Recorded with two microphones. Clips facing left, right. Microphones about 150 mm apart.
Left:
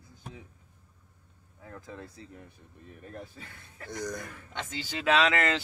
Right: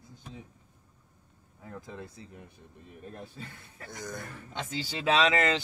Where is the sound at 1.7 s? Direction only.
20° right (ahead or behind).